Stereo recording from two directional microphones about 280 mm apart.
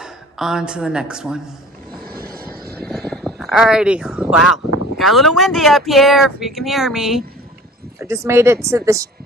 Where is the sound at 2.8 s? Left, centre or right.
Centre.